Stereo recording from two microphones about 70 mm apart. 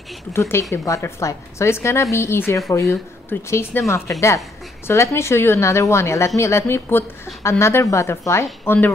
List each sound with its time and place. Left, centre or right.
0.3 s a woman's voice: left